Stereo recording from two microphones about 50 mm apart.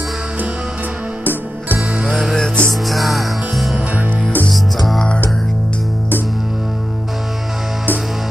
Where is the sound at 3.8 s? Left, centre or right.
Right.